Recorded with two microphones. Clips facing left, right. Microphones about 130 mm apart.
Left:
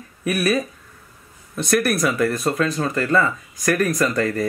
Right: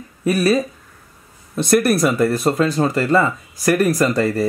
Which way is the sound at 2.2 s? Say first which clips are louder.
Right 4 dB; 30° right (ahead or behind).